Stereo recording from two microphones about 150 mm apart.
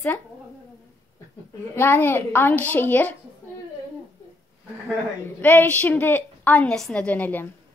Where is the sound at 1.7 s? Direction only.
15° left (ahead or behind).